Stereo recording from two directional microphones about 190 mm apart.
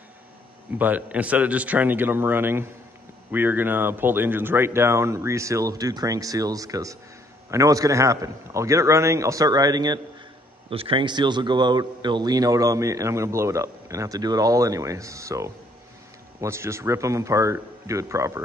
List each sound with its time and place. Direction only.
0.7 s a man's voice: 10° right (ahead or behind)